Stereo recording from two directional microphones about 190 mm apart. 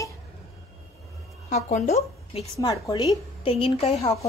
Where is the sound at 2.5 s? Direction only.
20° left (ahead or behind).